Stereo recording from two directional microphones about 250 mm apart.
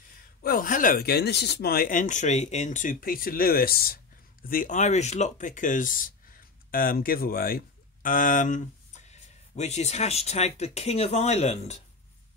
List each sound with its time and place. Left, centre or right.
0.4 s speech: left